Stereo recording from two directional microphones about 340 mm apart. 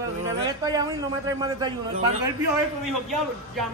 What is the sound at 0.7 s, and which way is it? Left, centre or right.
A man's voice, centre.